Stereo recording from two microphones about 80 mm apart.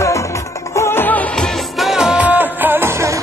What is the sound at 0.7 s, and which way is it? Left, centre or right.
Music, left.